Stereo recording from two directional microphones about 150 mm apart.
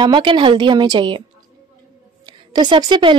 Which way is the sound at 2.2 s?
30° right (ahead or behind).